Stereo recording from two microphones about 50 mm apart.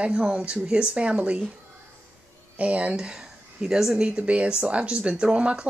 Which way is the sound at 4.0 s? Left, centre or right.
Right.